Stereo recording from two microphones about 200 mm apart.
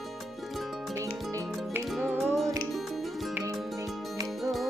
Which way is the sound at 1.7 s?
5° right (ahead or behind).